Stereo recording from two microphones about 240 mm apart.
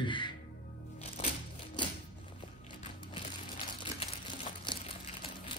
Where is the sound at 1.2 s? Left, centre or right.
Left.